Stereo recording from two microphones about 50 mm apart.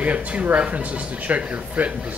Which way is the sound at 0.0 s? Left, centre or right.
Right.